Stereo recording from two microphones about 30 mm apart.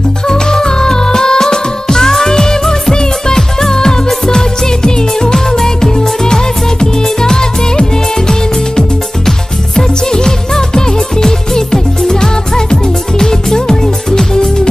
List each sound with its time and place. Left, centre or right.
0.3 s music: left